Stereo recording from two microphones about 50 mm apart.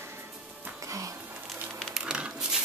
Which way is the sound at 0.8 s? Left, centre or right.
Right.